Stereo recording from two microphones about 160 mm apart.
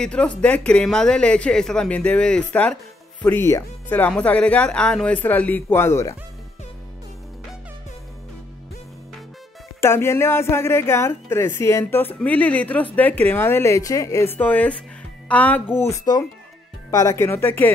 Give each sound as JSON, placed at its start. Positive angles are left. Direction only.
{"t": 0.0, "sound": "speech", "side_deg": 5}
{"t": 9.8, "sound": "speech", "side_deg": 15}